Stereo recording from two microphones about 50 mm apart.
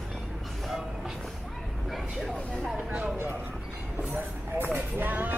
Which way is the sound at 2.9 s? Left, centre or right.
Centre.